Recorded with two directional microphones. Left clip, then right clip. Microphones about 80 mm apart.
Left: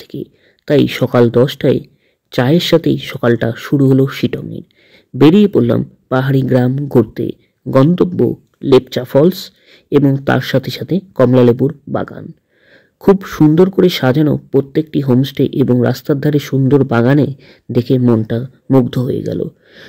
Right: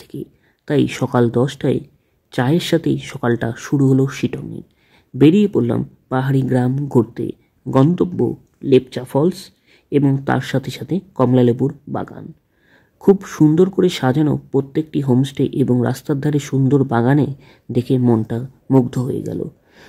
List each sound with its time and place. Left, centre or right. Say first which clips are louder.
0.0 s speech: left 5 dB; centre
8.5 s speech: left 4 dB; left
10.4 s speech: left 7 dB; centre
12.7 s a sound: left 3 dB; centre
13.6 s speech: left 5 dB; centre